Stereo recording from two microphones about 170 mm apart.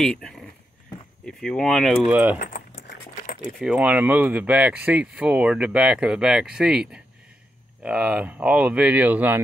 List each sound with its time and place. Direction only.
0.0 s speech: 5° left (ahead or behind)
2.3 s speech: 55° left (ahead or behind)
3.5 s speech: 5° right (ahead or behind)